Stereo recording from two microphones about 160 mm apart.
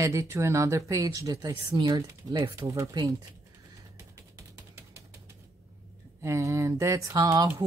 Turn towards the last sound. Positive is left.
turn(degrees=-20)  # may be behind; listen again after turning